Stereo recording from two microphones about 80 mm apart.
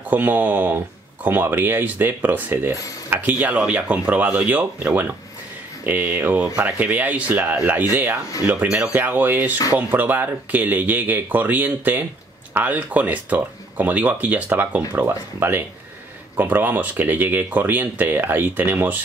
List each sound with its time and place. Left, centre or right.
0.1 s speech: right
2.7 s speech: left
3.1 s speech: right
5.9 s speech: right